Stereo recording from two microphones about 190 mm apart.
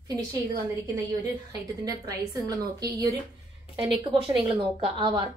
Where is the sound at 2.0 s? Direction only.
20° right (ahead or behind).